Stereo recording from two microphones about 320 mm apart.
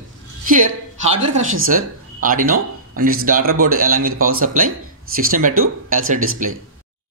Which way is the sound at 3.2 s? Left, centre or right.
Right.